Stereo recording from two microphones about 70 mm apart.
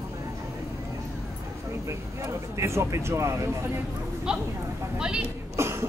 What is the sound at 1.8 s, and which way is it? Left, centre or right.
Speech, right.